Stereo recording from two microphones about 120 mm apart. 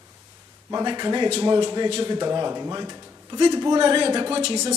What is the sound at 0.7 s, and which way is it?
A woman's voice, 35° right (ahead or behind).